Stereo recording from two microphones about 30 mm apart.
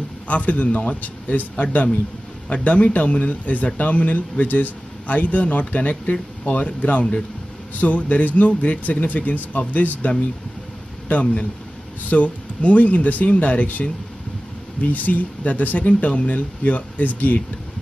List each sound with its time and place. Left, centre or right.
0.3 s speech: left
2.5 s speech: left
11.1 s speech: left